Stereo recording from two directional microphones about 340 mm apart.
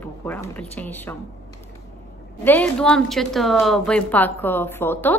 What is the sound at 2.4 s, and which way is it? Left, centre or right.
A woman's voice, centre.